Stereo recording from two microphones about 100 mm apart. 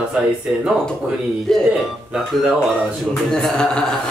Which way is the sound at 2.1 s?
5° right (ahead or behind).